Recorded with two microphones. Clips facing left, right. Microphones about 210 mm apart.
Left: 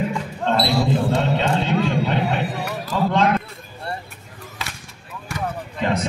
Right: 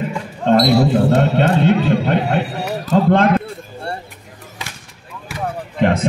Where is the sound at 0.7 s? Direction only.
55° right (ahead or behind).